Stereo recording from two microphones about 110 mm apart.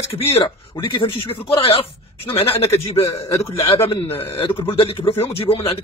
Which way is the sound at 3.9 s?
60° left (ahead or behind).